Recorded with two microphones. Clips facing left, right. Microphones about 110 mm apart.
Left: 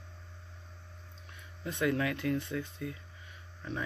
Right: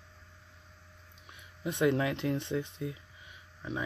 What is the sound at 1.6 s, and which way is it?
Speech, 20° right (ahead or behind).